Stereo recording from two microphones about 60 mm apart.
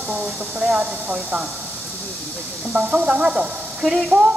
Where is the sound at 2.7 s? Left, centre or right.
Centre.